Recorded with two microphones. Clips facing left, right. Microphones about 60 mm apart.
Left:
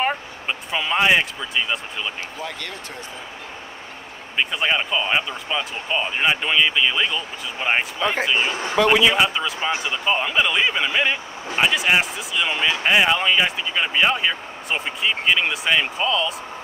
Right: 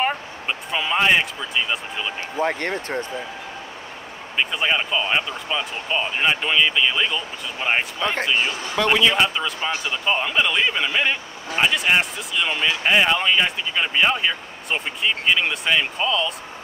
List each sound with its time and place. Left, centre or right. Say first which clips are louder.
0.0 s speech: even; centre
2.3 s speech: right 8 dB; right
4.4 s speech: even; centre
8.4 s speech: left 1 dB; left
8.7 s speech: left 2 dB; centre
9.6 s speech: left 1 dB; centre
10.0 s speech: even; centre